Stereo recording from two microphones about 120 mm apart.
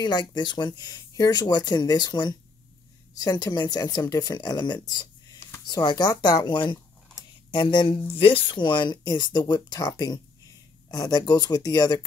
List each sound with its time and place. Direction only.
0.0 s speech: 35° left (ahead or behind)